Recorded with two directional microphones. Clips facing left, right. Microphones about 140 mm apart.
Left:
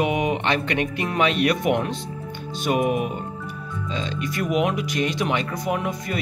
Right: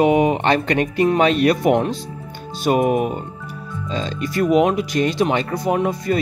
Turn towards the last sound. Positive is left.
turn(degrees=-30)  # may be behind; listen again after turning